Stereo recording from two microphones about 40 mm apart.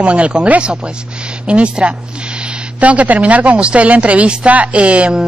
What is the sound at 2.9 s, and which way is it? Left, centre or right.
Speech, right.